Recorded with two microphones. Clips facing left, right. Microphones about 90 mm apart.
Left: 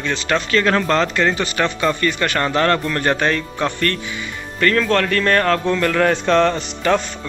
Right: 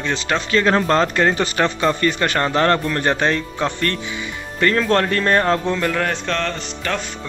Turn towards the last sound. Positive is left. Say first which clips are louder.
# left 6 dB
turn(degrees=15)  # may be behind; listen again after turning